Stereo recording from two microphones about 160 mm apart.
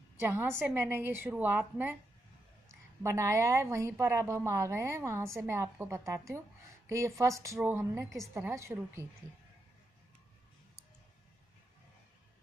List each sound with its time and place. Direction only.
0.2 s a woman's voice: 15° right (ahead or behind)
3.0 s a woman's voice: 20° right (ahead or behind)